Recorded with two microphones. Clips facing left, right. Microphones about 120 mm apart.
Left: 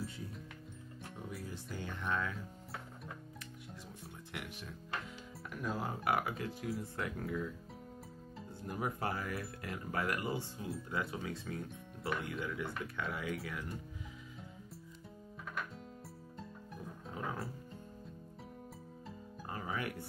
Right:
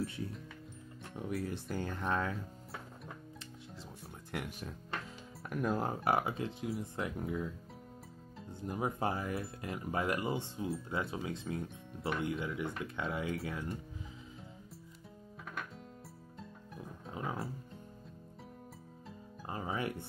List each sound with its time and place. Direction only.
1.3 s speech: 65° right (ahead or behind)
1.7 s speech: 45° right (ahead or behind)
4.3 s speech: 45° right (ahead or behind)
6.0 s speech: 25° right (ahead or behind)
17.1 s music: 20° right (ahead or behind)
19.4 s music: 25° right (ahead or behind)